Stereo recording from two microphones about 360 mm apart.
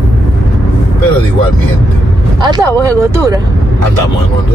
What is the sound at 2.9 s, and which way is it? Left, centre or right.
Speech, centre.